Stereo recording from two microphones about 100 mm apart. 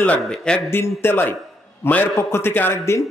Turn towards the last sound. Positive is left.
turn(degrees=25)  # may be behind; listen again after turning